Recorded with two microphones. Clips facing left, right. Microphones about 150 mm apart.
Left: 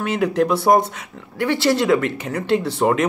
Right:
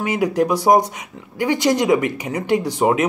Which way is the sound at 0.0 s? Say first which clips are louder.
Even; 10° right (ahead or behind).